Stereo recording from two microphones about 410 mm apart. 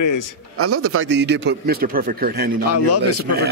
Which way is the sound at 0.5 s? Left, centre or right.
Right.